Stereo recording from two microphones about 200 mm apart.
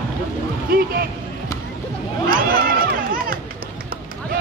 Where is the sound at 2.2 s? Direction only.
45° right (ahead or behind).